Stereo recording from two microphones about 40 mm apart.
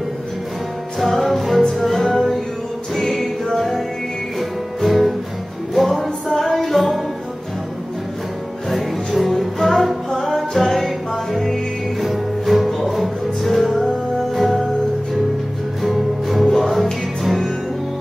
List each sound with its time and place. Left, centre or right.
0.9 s music: centre
8.6 s music: centre
12.0 s music: centre
15.8 s music: centre